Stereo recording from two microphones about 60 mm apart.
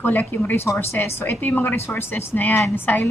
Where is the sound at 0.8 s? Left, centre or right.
Left.